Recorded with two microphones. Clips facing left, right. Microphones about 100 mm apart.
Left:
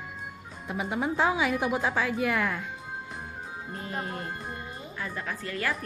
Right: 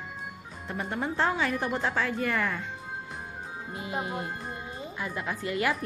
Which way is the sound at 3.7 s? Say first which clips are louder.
Right 2 dB; 10° right (ahead or behind).